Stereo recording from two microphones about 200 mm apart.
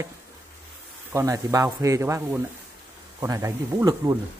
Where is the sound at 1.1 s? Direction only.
15° right (ahead or behind).